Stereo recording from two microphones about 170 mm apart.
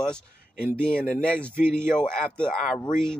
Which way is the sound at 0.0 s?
5° left (ahead or behind).